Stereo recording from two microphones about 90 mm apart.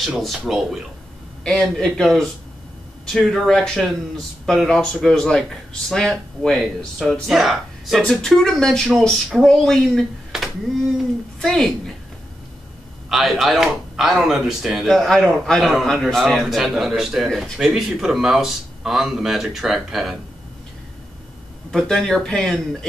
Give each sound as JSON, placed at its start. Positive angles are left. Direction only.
{"t": 0.0, "sound": "a man's voice", "side_deg": 0}
{"t": 10.3, "sound": "a sound", "side_deg": -5}
{"t": 11.3, "sound": "a woman's voice", "side_deg": 5}
{"t": 13.1, "sound": "a man's voice", "side_deg": 0}
{"t": 21.6, "sound": "a man's voice", "side_deg": 5}